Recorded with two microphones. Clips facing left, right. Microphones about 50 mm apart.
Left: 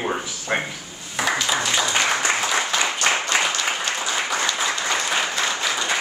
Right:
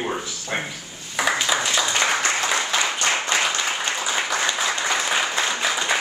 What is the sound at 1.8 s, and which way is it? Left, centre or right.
Applause, centre.